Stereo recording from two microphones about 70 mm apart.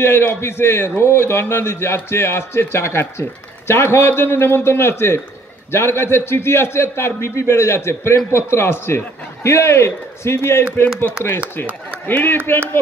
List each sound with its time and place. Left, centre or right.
0.3 s speech: left
12.1 s a man's voice: left